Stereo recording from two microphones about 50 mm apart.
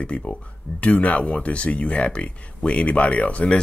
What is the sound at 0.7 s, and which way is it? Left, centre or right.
Speech, left.